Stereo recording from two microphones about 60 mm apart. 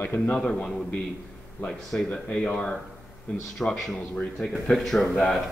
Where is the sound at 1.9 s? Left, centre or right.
Left.